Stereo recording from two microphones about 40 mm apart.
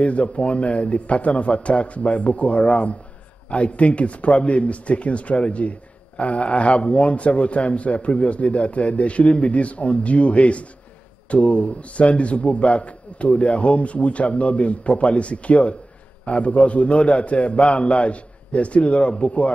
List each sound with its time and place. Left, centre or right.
0.0 s speech: left